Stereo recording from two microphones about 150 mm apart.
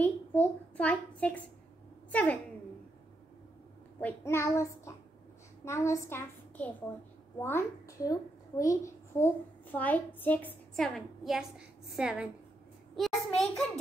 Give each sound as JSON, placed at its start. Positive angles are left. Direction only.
{"t": 0.0, "sound": "a child's voice", "side_deg": 10}
{"t": 4.0, "sound": "child singing", "side_deg": 20}
{"t": 5.7, "sound": "a child's voice", "side_deg": 20}